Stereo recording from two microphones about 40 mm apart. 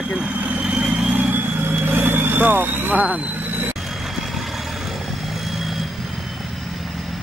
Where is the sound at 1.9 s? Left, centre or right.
Right.